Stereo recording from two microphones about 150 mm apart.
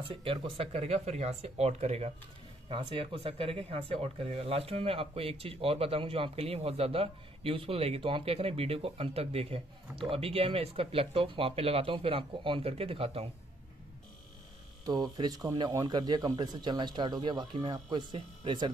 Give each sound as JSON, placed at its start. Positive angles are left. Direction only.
{"t": 0.1, "sound": "speech", "side_deg": -35}
{"t": 2.7, "sound": "speech", "side_deg": -35}
{"t": 14.9, "sound": "speech", "side_deg": -25}